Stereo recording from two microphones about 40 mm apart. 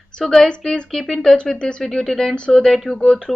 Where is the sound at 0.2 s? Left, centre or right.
Centre.